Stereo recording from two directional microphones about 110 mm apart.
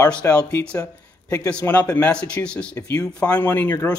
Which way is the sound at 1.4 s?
10° left (ahead or behind).